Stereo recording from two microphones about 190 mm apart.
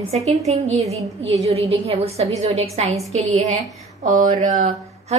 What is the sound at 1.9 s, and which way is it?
A woman's voice, 35° right (ahead or behind).